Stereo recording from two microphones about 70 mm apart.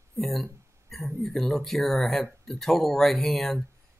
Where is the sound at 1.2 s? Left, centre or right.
Centre.